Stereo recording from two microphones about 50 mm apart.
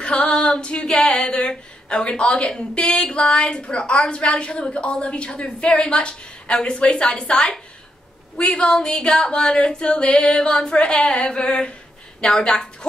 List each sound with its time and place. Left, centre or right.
0.0 s female singing: left
2.7 s a woman's voice: centre